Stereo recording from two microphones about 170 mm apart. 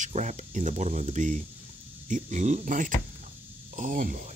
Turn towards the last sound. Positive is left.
turn(degrees=-50)  # may be behind; listen again after turning